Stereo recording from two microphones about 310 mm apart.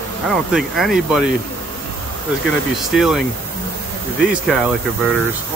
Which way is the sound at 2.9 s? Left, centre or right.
Centre.